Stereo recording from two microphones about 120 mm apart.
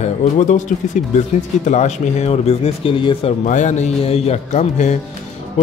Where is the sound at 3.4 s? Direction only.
85° left.